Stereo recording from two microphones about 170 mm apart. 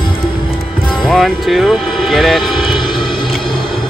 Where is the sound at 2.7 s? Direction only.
25° left (ahead or behind).